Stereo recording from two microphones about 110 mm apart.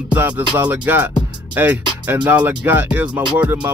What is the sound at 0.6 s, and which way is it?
Music, 15° right (ahead or behind).